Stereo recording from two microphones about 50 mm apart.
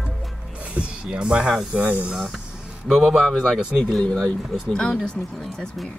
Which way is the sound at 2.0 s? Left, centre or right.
Centre.